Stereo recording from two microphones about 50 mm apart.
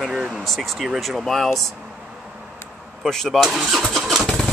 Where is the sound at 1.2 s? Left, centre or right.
Centre.